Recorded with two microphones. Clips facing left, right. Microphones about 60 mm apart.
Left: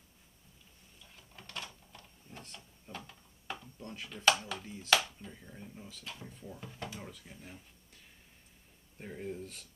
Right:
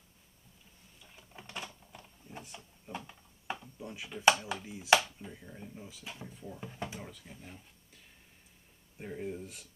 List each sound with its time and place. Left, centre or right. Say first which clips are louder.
1.1 s a sound: right 1 dB; centre
3.8 s speech: right 3 dB; centre
7.0 s speech: right 1 dB; centre